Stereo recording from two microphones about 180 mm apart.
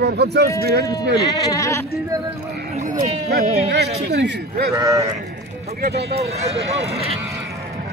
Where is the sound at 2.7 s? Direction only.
40° right (ahead or behind).